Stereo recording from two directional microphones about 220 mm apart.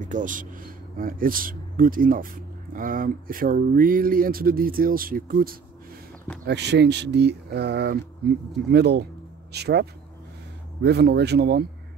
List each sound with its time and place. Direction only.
0.0 s speech: 35° right (ahead or behind)